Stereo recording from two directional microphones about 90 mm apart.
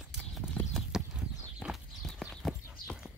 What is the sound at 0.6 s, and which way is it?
Clip-clop, 20° left (ahead or behind).